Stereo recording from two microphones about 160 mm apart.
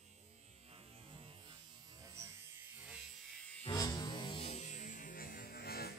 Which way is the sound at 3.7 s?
25° left (ahead or behind).